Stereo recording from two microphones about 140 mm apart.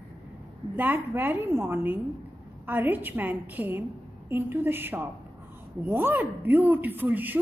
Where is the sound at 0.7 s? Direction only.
15° right (ahead or behind).